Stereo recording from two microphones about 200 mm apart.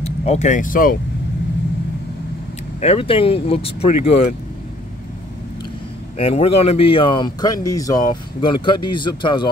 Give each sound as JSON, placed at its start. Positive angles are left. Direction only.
{"t": 0.0, "sound": "speech", "side_deg": 35}
{"t": 2.8, "sound": "speech", "side_deg": 30}
{"t": 6.1, "sound": "speech", "side_deg": 30}